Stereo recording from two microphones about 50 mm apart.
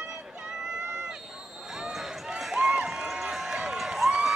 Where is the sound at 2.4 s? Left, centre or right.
Centre.